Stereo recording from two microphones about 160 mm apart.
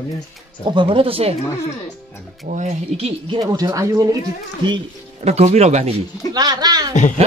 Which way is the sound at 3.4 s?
20° right (ahead or behind).